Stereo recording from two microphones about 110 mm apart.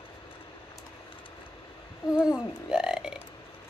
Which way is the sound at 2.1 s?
5° right (ahead or behind).